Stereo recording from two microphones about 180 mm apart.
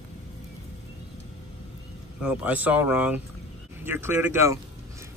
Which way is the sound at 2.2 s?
5° right (ahead or behind).